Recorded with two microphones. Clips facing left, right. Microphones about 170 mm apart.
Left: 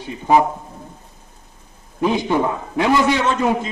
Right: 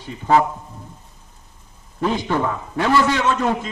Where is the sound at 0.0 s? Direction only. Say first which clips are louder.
Left 1 dB; 15° left (ahead or behind).